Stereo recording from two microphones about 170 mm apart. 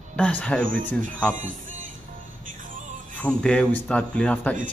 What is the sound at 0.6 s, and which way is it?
Speech, 55° right (ahead or behind).